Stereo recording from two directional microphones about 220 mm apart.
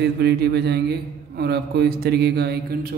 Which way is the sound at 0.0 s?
45° right (ahead or behind).